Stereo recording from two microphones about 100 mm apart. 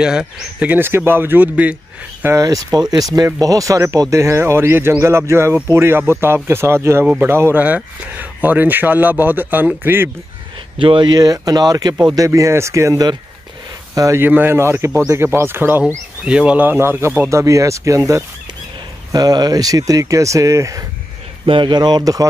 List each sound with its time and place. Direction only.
0.0 s speech: 5° right (ahead or behind)
0.7 s speech: 20° right (ahead or behind)
2.2 s speech: 35° right (ahead or behind)
10.8 s speech: 55° right (ahead or behind); by 14.2 s 35° right (ahead or behind)
14.2 s speech: 20° right (ahead or behind)
16.3 s speech: 10° right (ahead or behind); by 20.8 s 30° right (ahead or behind)
21.5 s speech: 55° right (ahead or behind)